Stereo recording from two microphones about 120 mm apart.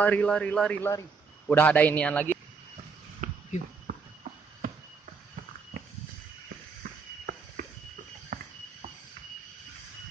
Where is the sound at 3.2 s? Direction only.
90° right.